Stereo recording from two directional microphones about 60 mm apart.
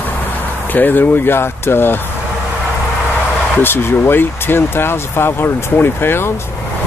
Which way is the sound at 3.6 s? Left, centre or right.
Left.